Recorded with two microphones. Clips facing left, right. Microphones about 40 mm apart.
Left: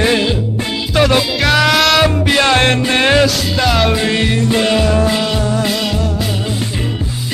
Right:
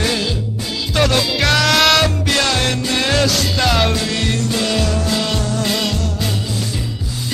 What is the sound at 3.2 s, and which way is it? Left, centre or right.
Music, centre.